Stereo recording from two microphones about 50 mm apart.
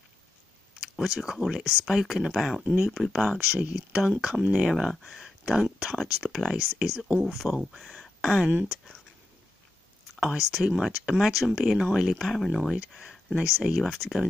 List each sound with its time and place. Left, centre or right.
0.7 s speech: centre
3.5 s speech: centre
8.2 s speech: centre
8.5 s speech: right
10.2 s speech: centre
13.4 s speech: centre
13.7 s speech: centre